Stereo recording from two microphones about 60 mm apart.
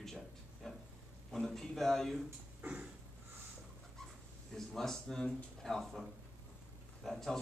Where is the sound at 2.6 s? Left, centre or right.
Centre.